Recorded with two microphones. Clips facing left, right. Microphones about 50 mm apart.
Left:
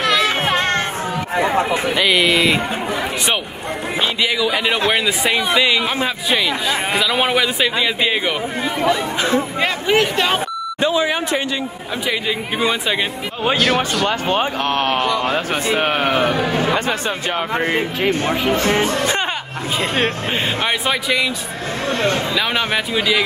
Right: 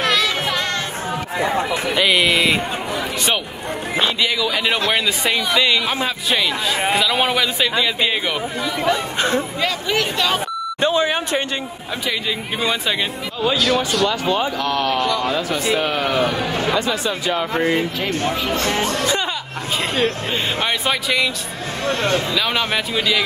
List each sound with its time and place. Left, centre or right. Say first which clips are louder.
0.0 s music: left 2 dB; left
1.3 s a sound: left 3 dB; left
2.0 s speech: left 1 dB; centre
4.2 s a man's voice: left 2 dB; centre
6.3 s speech: left 1 dB; left
7.0 s a man's voice: left 1 dB; centre
9.6 s speech: left 4 dB; left
12.1 s a man's voice: left 2 dB; centre
13.4 s speech: left 1 dB; left
17.7 s a man's voice: left 3 dB; left
20.8 s a man's voice: left 1 dB; centre
22.3 s a man's voice: left 1 dB; centre